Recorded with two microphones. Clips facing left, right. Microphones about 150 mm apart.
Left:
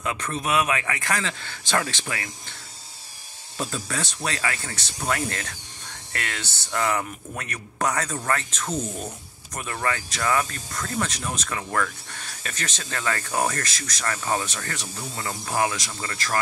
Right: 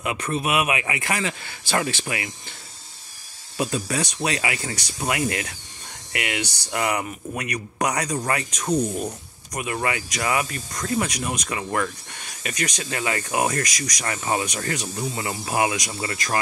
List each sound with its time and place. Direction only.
0.0 s speech: 15° right (ahead or behind)
3.5 s speech: 20° right (ahead or behind)